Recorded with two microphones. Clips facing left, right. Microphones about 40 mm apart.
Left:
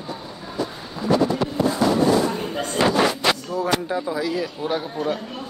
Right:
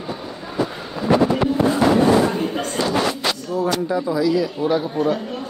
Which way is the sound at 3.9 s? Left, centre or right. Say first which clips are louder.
Right 5 dB; left.